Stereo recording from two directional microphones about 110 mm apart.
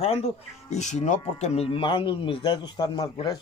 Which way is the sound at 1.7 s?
50° left (ahead or behind).